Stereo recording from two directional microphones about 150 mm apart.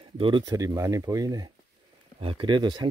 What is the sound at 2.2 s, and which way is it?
Speech, 35° right (ahead or behind).